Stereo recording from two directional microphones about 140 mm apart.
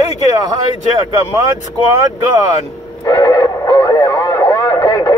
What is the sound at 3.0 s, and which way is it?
Radio, 25° left (ahead or behind).